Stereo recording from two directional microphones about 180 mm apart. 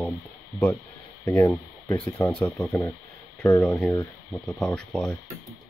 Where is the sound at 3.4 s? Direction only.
20° left (ahead or behind).